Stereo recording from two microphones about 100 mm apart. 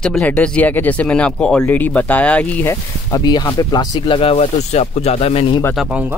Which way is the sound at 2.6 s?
40° left (ahead or behind).